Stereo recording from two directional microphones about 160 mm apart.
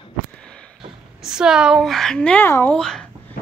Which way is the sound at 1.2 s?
5° right (ahead or behind).